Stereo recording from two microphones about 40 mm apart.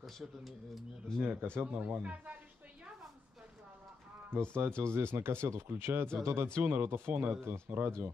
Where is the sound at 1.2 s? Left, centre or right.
Right.